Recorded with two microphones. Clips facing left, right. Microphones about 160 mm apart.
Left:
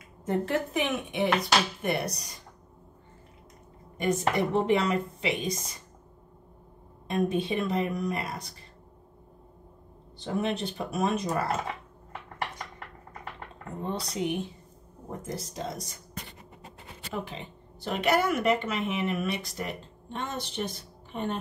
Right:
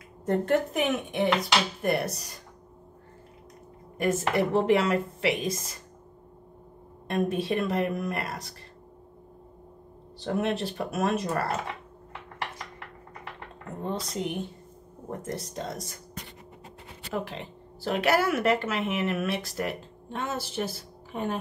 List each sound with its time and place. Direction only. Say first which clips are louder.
0.2 s a woman's voice: right 3 dB; centre (ahead or behind)
4.0 s a woman's voice: right 1 dB; centre (ahead or behind)
7.1 s a woman's voice: even; centre (ahead or behind)
10.1 s a woman's voice: right 2 dB; centre (ahead or behind)
13.8 s a woman's voice: left 1 dB; centre (ahead or behind)
17.1 s a woman's voice: right 3 dB; centre (ahead or behind)